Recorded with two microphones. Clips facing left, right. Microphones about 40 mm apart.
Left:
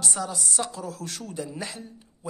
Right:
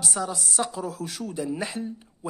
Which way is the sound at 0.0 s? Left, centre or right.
Centre.